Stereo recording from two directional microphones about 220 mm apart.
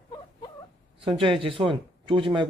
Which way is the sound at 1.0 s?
25° right (ahead or behind).